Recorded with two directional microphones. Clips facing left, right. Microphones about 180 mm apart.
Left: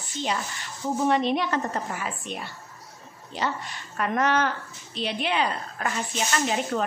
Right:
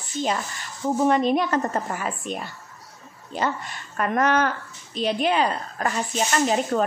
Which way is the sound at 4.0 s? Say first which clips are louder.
Right 3 dB; 45° right (ahead or behind).